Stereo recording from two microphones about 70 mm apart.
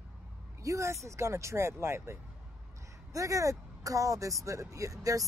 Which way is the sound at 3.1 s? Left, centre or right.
Right.